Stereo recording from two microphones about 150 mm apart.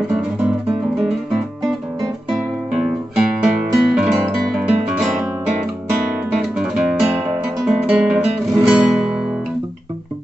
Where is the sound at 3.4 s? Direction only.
5° right (ahead or behind).